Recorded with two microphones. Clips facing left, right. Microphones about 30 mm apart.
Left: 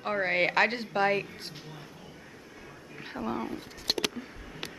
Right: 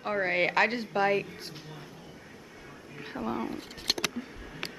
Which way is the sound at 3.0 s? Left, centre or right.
Centre.